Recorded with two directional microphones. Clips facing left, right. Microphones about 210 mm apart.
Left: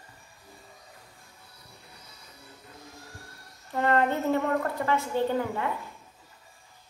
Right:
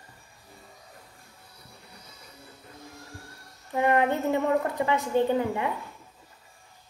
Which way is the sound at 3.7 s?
15° right (ahead or behind).